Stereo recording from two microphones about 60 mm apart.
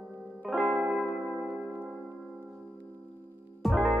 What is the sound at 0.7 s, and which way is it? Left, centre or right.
Music, centre.